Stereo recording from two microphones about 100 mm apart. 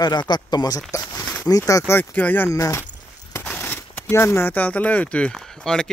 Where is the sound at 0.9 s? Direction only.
30° left (ahead or behind).